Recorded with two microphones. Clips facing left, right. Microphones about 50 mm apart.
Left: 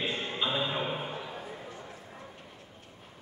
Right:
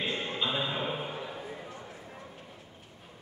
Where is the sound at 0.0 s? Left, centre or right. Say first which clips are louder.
Even; centre.